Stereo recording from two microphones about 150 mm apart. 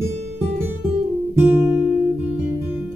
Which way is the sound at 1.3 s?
15° right (ahead or behind).